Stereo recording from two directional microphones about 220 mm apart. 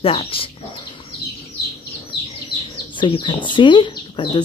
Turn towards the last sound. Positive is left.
turn(degrees=20)  # may be behind; listen again after turning